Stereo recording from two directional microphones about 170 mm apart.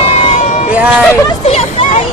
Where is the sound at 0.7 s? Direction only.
10° right (ahead or behind).